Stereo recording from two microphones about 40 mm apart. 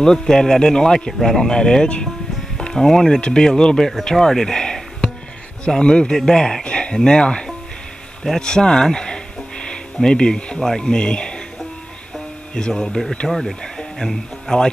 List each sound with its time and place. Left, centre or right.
0.0 s speech: centre
3.2 s speech: left
4.0 s music: centre
5.8 s speech: left
6.6 s a sound: left
7.1 s speech: left
8.2 s music: centre
10.0 s speech: left
12.5 s speech: centre
13.6 s music: centre
14.0 s speech: centre